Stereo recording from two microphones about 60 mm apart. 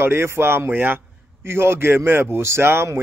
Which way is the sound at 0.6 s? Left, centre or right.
Right.